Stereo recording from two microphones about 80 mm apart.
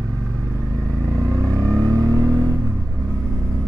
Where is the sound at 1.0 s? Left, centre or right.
Right.